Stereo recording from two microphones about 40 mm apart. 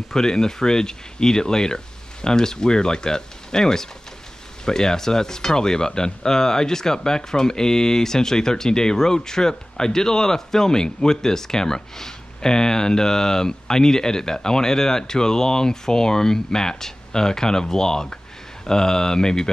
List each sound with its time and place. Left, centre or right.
0.1 s speech: centre